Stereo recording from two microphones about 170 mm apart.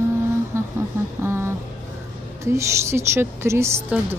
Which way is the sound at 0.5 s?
15° right (ahead or behind).